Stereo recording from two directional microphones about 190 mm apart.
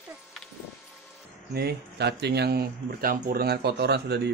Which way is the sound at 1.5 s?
60° right (ahead or behind).